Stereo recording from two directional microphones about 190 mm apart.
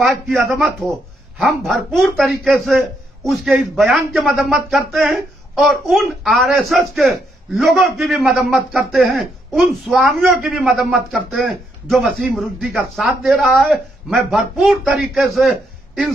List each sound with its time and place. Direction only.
0.0 s speech: centre (ahead or behind)